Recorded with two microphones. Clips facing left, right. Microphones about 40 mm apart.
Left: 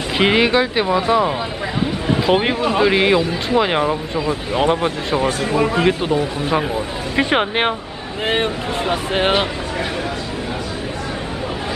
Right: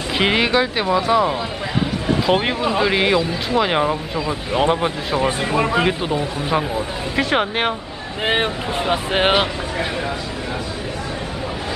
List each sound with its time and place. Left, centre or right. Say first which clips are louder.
0.2 s speech: left 2 dB; centre
5.9 s speech: left 3 dB; centre
7.2 s speech: left 2 dB; centre
8.3 s speech: even; centre